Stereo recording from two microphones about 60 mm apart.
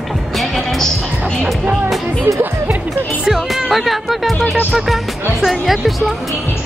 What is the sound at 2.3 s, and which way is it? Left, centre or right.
Speech, right.